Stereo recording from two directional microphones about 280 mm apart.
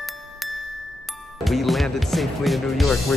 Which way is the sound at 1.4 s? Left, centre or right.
Centre.